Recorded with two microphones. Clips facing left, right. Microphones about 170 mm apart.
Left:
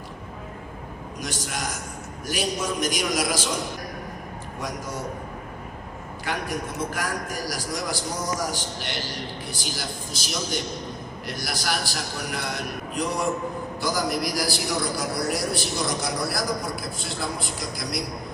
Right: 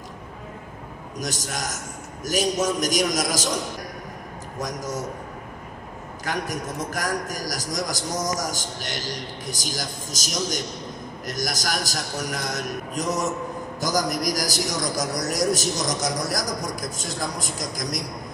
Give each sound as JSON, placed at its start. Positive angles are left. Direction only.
{"t": 1.2, "sound": "a man's voice", "side_deg": -40}
{"t": 4.6, "sound": "a man's voice", "side_deg": -40}
{"t": 6.2, "sound": "a man's voice", "side_deg": -40}